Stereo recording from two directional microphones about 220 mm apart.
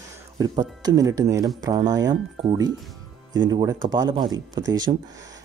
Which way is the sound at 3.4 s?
15° right (ahead or behind).